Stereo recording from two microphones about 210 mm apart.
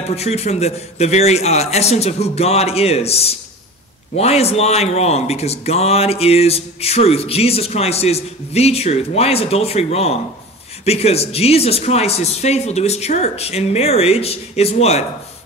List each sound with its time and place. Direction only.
0.1 s a man's voice: 30° left (ahead or behind)